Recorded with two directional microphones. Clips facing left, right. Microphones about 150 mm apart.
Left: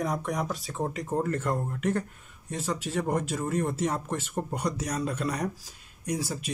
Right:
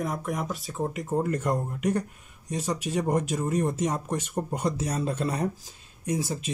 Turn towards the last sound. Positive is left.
turn(degrees=-25)  # may be behind; listen again after turning